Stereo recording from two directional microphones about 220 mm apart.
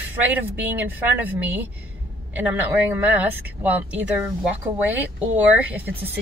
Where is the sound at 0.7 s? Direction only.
5° right (ahead or behind).